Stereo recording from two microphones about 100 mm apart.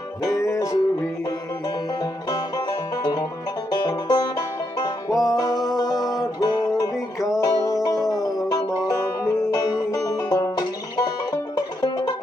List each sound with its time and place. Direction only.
0.2 s music: 35° left (ahead or behind)
2.0 s music: 40° left (ahead or behind)